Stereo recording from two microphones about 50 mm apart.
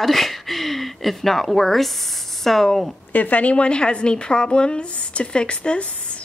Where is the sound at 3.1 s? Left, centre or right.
Left.